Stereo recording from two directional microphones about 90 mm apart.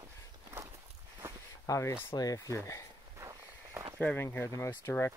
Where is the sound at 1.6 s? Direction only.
35° left (ahead or behind).